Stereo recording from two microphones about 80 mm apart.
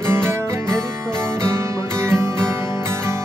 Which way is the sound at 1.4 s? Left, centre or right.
Right.